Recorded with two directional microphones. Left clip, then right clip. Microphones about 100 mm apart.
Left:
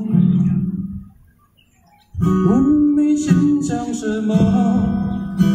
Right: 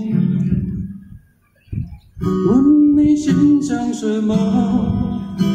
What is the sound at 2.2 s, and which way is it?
Music, 40° right (ahead or behind).